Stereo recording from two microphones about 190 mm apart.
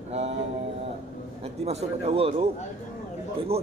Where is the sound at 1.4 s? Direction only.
35° right (ahead or behind).